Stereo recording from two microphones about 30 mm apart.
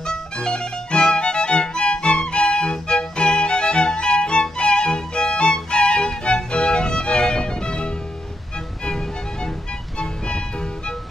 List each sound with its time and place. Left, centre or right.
0.0 s music: left